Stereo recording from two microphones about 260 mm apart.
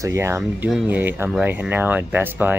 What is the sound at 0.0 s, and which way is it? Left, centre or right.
Speech, centre.